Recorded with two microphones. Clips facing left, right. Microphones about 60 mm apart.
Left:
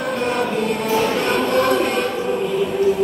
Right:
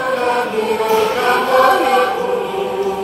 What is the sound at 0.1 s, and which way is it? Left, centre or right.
Chant, right.